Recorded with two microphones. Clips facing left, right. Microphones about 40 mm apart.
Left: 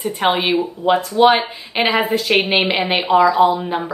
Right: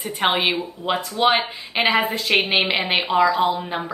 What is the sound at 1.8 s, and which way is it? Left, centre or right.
Speech, left.